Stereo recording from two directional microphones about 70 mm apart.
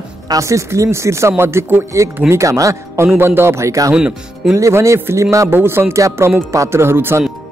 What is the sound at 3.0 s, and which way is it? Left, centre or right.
Speech, right.